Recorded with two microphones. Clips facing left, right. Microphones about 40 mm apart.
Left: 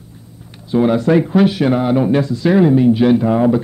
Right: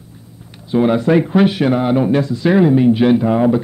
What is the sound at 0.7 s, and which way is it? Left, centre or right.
Speech, centre.